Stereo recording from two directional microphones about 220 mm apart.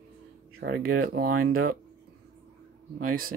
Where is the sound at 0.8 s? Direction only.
70° right (ahead or behind).